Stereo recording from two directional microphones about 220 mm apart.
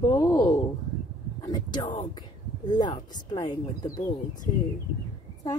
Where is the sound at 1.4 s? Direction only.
20° left (ahead or behind).